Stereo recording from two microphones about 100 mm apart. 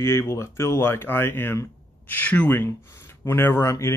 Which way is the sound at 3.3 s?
25° left (ahead or behind).